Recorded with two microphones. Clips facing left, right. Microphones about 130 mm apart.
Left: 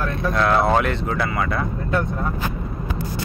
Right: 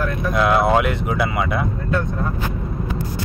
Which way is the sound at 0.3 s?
10° right (ahead or behind).